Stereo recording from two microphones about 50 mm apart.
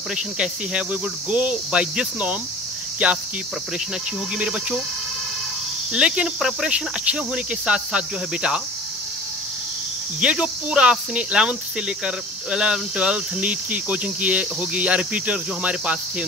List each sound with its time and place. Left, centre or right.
0.1 s speech: centre
4.4 s speech: centre
5.9 s speech: right
6.2 s cricket: centre
6.7 s speech: right
10.2 s speech: right